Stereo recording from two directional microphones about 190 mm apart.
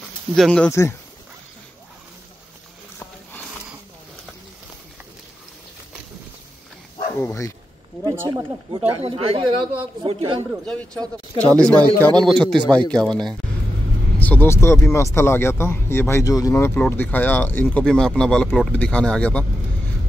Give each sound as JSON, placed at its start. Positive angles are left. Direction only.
{"t": 0.4, "sound": "speech", "side_deg": 5}
{"t": 7.2, "sound": "speech", "side_deg": 15}
{"t": 8.0, "sound": "a man's voice", "side_deg": -15}
{"t": 8.9, "sound": "a man's voice", "side_deg": -30}
{"t": 10.6, "sound": "speech", "side_deg": 5}